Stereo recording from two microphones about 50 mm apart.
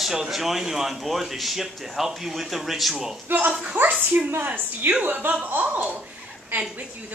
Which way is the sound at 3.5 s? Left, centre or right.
Right.